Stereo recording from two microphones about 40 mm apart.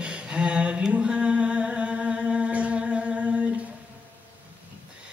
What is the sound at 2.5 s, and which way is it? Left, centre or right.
Music, right.